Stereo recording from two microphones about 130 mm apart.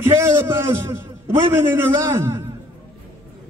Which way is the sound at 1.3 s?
20° right (ahead or behind).